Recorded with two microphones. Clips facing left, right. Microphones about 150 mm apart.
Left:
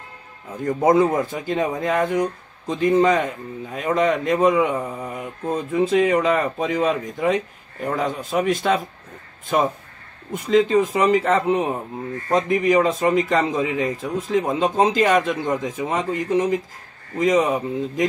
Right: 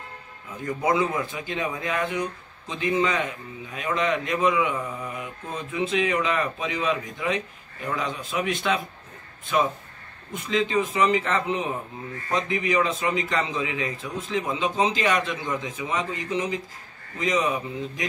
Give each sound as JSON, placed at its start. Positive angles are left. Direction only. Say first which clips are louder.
{"t": 0.7, "sound": "a man's voice", "louder": "left 7 dB", "side_deg": 45}